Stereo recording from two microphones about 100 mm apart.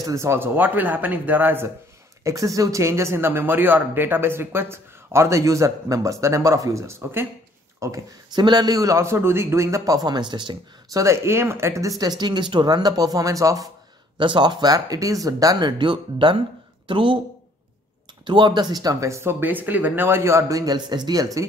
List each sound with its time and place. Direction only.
0.0 s a man's voice: 30° right (ahead or behind)
2.2 s a man's voice: 35° right (ahead or behind)
8.3 s speech: 45° right (ahead or behind)
10.9 s a man's voice: 30° right (ahead or behind)
12.2 s speech: 50° right (ahead or behind)
14.1 s speech: 55° right (ahead or behind); by 15.7 s 35° right (ahead or behind)
15.8 s a woman's voice: 55° right (ahead or behind)
18.2 s speech: 55° right (ahead or behind); by 21.5 s 35° right (ahead or behind)